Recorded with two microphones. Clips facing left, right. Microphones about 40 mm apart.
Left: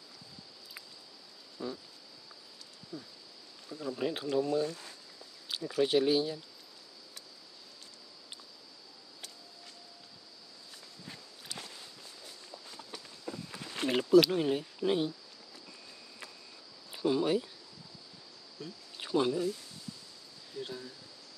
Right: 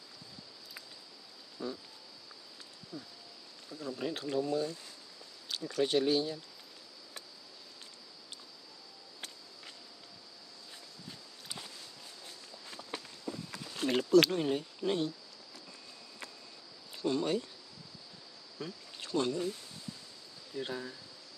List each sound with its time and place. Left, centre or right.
1.6 s a sound: centre
2.9 s speech: centre
3.6 s speech: centre
11.5 s walk: centre
13.3 s a sound: left
13.8 s speech: centre
16.9 s speech: centre
18.9 s a sound: centre
20.5 s speech: right